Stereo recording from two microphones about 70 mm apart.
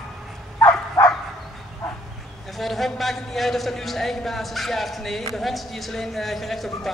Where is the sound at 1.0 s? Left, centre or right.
Left.